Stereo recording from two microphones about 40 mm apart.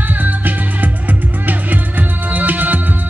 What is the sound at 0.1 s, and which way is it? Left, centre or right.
Music, right.